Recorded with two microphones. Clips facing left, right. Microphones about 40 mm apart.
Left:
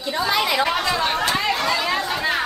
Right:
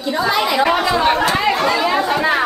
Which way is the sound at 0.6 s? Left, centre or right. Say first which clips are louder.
Right 6 dB; centre.